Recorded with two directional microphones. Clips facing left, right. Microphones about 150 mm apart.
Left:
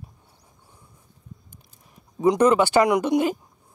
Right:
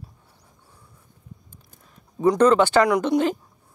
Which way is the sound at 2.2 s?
15° left (ahead or behind).